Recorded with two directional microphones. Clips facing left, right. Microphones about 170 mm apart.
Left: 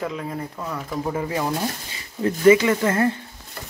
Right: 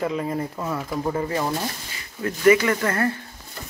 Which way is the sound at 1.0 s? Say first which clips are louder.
Even; 10° left (ahead or behind).